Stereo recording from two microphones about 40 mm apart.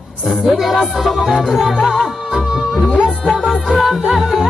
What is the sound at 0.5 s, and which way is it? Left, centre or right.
Music, centre.